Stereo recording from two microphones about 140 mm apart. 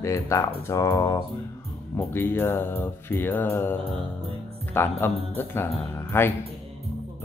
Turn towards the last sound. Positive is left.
turn(degrees=15)  # may be behind; listen again after turning